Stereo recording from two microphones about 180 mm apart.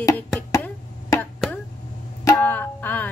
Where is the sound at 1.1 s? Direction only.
Centre (ahead or behind).